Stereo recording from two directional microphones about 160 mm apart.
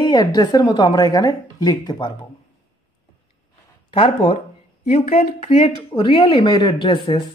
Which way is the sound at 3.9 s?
35° left (ahead or behind).